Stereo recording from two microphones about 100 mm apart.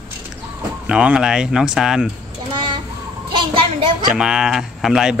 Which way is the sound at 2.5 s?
50° right (ahead or behind).